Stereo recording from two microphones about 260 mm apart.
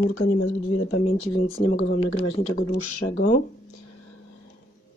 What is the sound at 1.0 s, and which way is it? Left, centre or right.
Speech, left.